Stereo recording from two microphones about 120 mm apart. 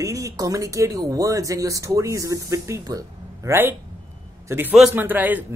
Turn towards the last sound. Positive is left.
turn(degrees=-15)  # may be behind; listen again after turning